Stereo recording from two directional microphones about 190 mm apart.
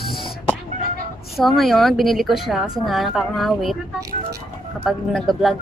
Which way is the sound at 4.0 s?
15° right (ahead or behind).